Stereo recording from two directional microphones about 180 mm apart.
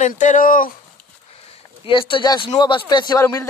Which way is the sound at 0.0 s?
45° left (ahead or behind).